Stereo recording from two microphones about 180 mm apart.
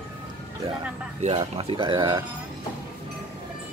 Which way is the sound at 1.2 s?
35° right (ahead or behind).